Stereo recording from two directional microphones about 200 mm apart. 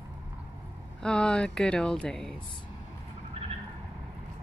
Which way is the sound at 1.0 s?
5° left (ahead or behind).